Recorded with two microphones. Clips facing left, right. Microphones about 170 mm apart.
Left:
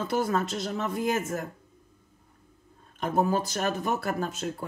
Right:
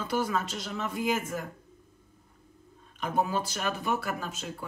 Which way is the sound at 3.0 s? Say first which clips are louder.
Left 3 dB; 45° left (ahead or behind).